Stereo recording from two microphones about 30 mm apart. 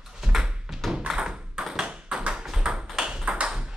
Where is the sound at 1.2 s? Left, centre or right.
Right.